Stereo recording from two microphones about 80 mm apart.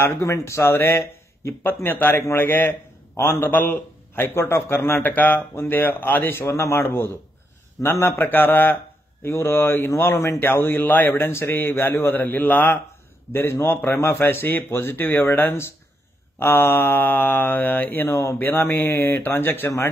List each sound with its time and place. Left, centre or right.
0.0 s a man's voice: left